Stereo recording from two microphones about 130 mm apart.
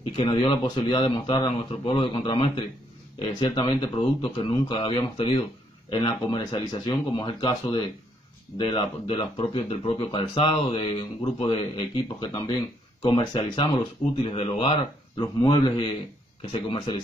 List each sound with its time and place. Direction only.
0.1 s speech: 45° left (ahead or behind)
12.2 s speech: 25° left (ahead or behind)
13.1 s speech: 40° left (ahead or behind)